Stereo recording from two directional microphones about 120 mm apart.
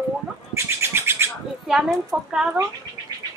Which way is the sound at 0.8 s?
20° right (ahead or behind).